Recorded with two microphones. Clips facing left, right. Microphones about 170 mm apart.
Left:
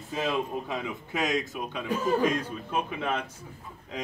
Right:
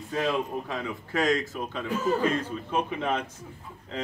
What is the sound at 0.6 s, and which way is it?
Speech, 20° left (ahead or behind).